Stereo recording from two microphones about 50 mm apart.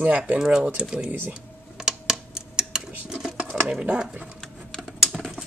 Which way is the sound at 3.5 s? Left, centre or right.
Right.